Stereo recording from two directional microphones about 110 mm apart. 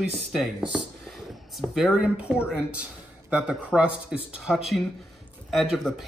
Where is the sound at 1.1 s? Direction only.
Centre (ahead or behind).